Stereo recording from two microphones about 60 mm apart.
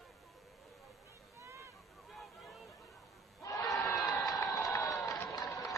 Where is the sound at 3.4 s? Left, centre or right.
Left.